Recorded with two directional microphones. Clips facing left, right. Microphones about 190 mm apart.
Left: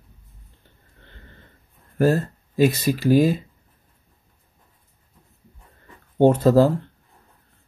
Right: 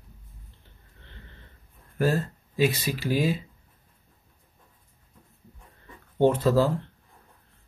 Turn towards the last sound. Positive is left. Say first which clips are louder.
# left 6 dB
turn(degrees=45)  # may be behind; listen again after turning